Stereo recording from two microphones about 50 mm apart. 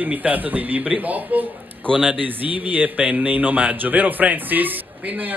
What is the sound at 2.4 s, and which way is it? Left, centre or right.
Speech, right.